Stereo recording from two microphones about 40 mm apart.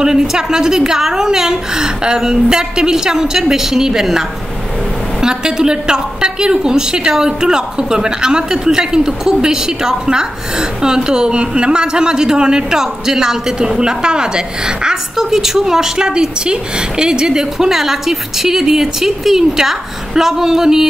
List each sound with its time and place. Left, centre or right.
0.0 s a woman's voice: centre
5.2 s a woman's voice: centre